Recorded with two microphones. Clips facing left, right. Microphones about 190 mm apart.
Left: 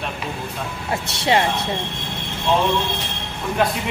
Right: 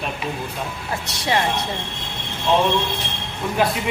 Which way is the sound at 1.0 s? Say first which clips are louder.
Left 3 dB; 25° left (ahead or behind).